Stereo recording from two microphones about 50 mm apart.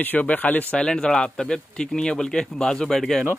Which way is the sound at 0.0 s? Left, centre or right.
Left.